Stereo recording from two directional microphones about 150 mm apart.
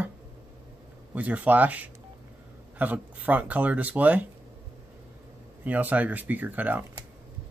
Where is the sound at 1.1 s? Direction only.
10° right (ahead or behind).